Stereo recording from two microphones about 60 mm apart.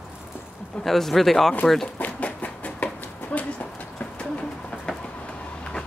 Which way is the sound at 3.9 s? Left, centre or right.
Left.